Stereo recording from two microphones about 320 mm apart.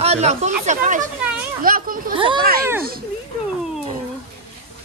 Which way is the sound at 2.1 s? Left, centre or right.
Centre.